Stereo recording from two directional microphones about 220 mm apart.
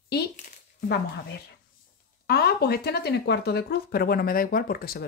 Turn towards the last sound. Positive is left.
turn(degrees=40)  # may be behind; listen again after turning